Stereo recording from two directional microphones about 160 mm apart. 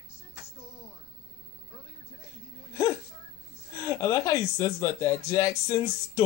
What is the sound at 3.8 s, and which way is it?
Speech, 20° left (ahead or behind).